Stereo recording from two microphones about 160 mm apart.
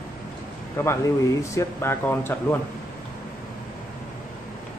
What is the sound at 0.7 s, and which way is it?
Speech, 15° left (ahead or behind).